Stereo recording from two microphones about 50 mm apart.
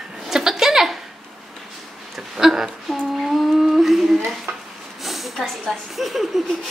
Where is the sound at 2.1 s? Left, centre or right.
Centre.